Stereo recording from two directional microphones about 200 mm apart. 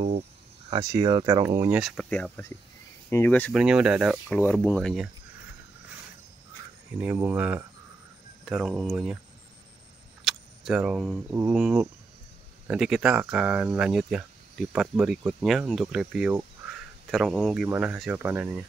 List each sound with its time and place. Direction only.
0.7 s speech: 20° right (ahead or behind)
1.7 s speech: centre (ahead or behind)
3.5 s speech: 5° right (ahead or behind)
4.3 s speech: 5° left (ahead or behind)
7.0 s speech: 5° right (ahead or behind)
10.2 s speech: centre (ahead or behind)